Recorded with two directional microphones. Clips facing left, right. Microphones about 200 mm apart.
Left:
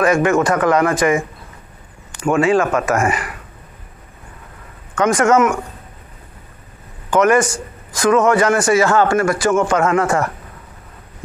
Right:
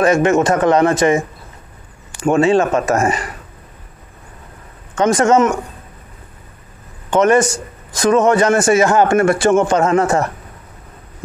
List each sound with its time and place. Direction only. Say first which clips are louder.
0.0 s a man's voice: right 2 dB; 25° right (ahead or behind)
2.2 s a man's voice: right 2 dB; 25° right (ahead or behind)
4.9 s a man's voice: right 1 dB; 25° right (ahead or behind)
7.1 s a man's voice: right 1 dB; 20° right (ahead or behind)